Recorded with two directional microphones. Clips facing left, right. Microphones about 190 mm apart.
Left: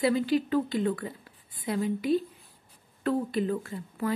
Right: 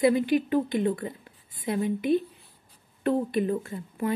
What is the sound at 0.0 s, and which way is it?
Speech, 20° right (ahead or behind).